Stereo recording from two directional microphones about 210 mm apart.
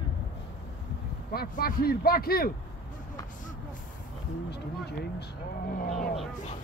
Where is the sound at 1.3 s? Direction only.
45° left (ahead or behind).